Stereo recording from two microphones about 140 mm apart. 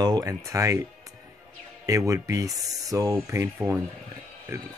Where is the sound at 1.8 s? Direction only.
20° right (ahead or behind).